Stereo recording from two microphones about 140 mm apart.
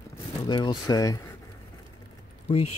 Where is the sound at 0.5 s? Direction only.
30° left (ahead or behind).